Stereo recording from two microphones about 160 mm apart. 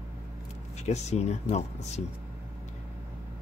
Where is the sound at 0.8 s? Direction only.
45° left (ahead or behind).